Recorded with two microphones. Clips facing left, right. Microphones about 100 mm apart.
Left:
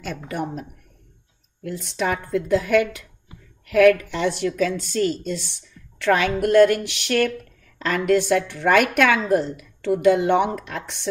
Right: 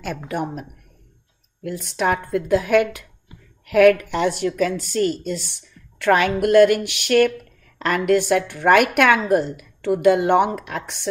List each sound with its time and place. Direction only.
0.0 s a woman's voice: 50° right (ahead or behind)
1.8 s a woman's voice: 55° right (ahead or behind)
9.4 s a woman's voice: 5° right (ahead or behind)
10.0 s a woman's voice: 55° right (ahead or behind)